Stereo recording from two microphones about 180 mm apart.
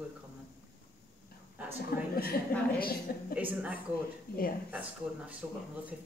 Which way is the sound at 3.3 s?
10° right (ahead or behind).